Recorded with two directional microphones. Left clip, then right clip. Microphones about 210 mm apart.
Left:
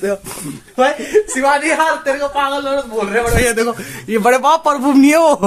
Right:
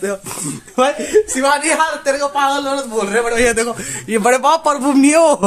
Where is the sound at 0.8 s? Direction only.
40° right (ahead or behind).